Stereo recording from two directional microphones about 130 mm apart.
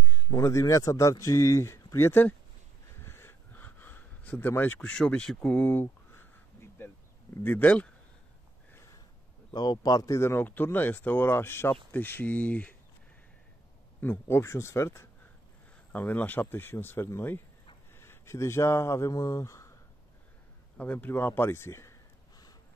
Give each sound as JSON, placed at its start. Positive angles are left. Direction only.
{"t": 0.3, "sound": "speech", "side_deg": 20}
{"t": 3.0, "sound": "a sound", "side_deg": 20}
{"t": 7.4, "sound": "speech", "side_deg": 15}
{"t": 9.5, "sound": "speech", "side_deg": 35}
{"t": 14.0, "sound": "speech", "side_deg": 20}
{"t": 20.7, "sound": "speech", "side_deg": 10}